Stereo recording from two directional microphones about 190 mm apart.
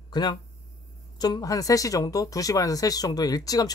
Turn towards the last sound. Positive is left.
turn(degrees=20)  # may be behind; listen again after turning